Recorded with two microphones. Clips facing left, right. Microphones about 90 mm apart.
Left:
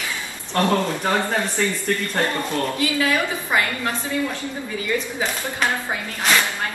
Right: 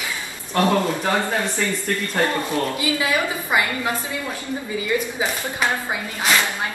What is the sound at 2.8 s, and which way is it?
Speech, 15° right (ahead or behind).